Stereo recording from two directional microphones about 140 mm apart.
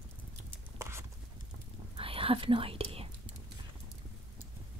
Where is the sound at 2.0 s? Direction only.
40° right (ahead or behind).